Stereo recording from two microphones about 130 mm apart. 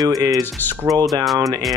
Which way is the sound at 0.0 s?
30° right (ahead or behind).